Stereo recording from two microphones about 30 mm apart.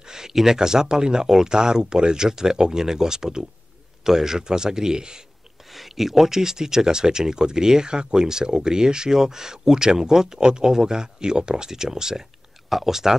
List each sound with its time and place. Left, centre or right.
0.0 s a sound: centre
0.6 s speech: right
5.7 s speech: centre
12.6 s speech: centre